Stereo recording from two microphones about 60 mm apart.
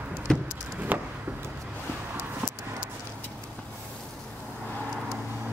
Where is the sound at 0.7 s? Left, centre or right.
Right.